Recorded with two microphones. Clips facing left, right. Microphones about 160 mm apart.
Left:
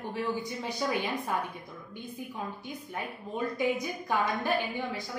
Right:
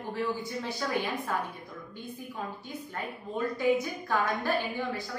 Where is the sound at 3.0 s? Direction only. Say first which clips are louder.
Right 1 dB; 15° left (ahead or behind).